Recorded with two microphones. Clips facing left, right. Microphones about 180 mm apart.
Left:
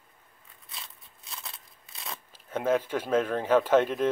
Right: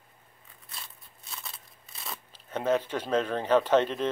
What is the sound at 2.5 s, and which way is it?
Speech, 10° left (ahead or behind).